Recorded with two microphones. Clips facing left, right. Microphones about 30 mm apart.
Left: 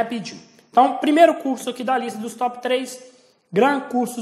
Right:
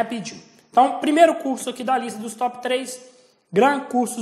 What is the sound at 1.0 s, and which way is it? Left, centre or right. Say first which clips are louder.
Speech: left 1 dB; left.